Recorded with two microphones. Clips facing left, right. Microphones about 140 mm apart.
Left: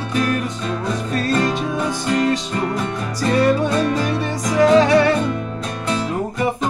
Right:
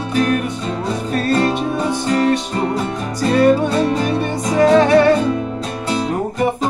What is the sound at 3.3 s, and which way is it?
Music, 30° right (ahead or behind).